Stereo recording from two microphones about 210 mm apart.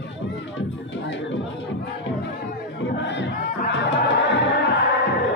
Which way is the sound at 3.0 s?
55° left (ahead or behind).